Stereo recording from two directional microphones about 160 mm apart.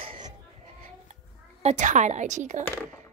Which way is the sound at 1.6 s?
45° right (ahead or behind).